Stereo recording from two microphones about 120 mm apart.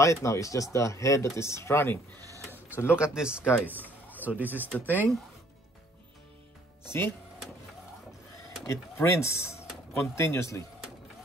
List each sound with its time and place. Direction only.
0.0 s speech: 25° left (ahead or behind)
2.5 s printer: 20° left (ahead or behind)
3.0 s speech: 10° right (ahead or behind)
4.7 s speech: 15° left (ahead or behind)
6.9 s speech: 20° left (ahead or behind)
8.6 s speech: 25° left (ahead or behind)